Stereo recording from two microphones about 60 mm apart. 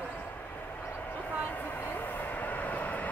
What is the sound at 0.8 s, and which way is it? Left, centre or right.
Train, left.